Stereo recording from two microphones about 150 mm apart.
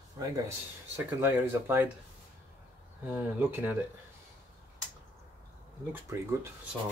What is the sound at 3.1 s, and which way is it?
Speech, 10° right (ahead or behind).